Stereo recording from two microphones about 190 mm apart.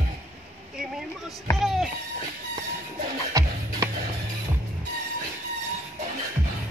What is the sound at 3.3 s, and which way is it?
Music, 15° right (ahead or behind).